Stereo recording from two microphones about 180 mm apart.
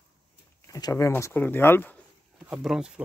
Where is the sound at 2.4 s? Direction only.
Centre (ahead or behind).